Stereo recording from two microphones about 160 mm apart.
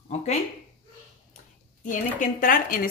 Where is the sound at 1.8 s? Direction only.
60° left (ahead or behind).